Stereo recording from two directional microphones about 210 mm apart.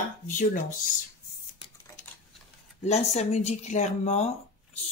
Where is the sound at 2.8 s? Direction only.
30° left (ahead or behind).